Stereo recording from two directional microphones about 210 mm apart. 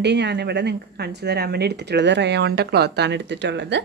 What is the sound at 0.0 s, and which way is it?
A woman's voice, 55° right (ahead or behind).